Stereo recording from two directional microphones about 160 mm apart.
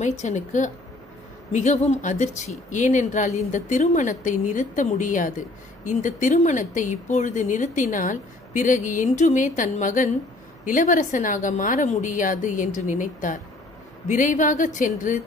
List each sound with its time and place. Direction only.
0.0 s speech: 45° left (ahead or behind)